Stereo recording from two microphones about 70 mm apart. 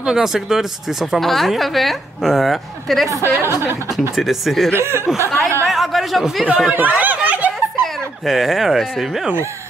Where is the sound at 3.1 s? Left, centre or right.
Right.